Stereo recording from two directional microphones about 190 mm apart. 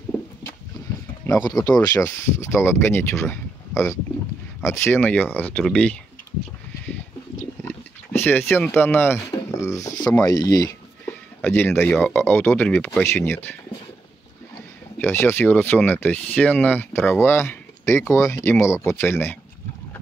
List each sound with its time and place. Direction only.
1.2 s speech: 20° left (ahead or behind)
7.6 s a sound: 10° left (ahead or behind)
10.2 s speech: 20° left (ahead or behind)
15.0 s speech: 10° left (ahead or behind)